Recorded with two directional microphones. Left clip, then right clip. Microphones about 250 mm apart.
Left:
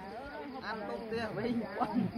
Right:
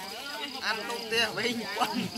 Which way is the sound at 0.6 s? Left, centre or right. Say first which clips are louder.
Right 8 dB; centre.